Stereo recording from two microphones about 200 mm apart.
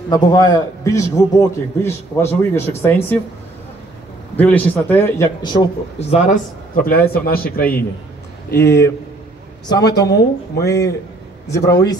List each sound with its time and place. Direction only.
0.1 s a man's voice: 20° left (ahead or behind)
4.4 s a man's voice: 10° left (ahead or behind)
5.4 s a man's voice: 25° left (ahead or behind); by 8.7 s 55° left (ahead or behind)
9.7 s a man's voice: 20° left (ahead or behind)